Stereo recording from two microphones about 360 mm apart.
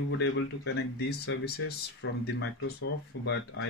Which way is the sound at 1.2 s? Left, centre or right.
Left.